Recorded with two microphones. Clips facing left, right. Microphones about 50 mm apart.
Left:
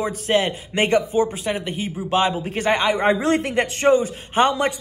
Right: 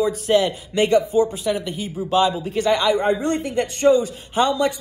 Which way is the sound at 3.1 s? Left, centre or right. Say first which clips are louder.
Left 3 dB; left.